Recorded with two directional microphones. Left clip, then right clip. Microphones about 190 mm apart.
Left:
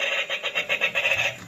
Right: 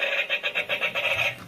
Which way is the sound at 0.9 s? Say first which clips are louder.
Left 1 dB; 5° left (ahead or behind).